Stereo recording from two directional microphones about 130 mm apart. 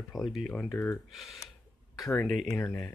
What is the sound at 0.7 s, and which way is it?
Speech, 15° left (ahead or behind).